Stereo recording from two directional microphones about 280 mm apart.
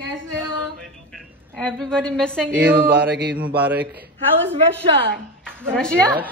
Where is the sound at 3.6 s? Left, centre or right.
Centre.